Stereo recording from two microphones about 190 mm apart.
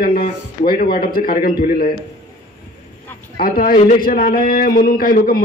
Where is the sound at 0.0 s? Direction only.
50° left (ahead or behind).